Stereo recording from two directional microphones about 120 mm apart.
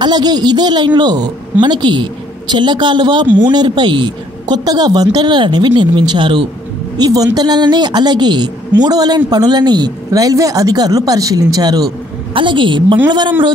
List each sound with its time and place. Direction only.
0.0 s a woman's voice: 35° right (ahead or behind)
7.0 s a woman's voice: 30° right (ahead or behind)
12.4 s a woman's voice: 40° right (ahead or behind)